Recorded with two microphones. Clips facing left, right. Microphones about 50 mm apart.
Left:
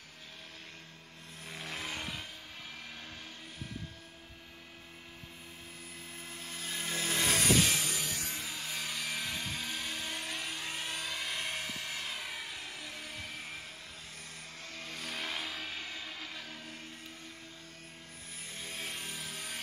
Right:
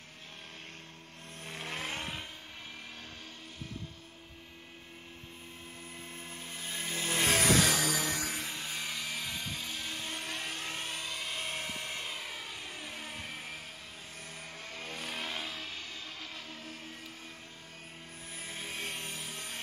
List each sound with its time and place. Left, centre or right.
1.4 s vehicle: right
6.3 s vehicle: centre
7.5 s music: right
8.6 s music: centre
9.2 s vehicle: centre
12.2 s vehicle: centre
12.6 s vehicle: centre
12.9 s vehicle: right
14.6 s vehicle: right
15.1 s music: centre
18.6 s a sound: centre